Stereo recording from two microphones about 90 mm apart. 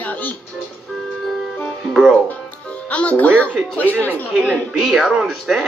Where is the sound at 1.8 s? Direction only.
5° right (ahead or behind).